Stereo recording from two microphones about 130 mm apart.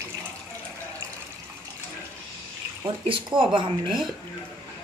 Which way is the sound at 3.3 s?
40° right (ahead or behind).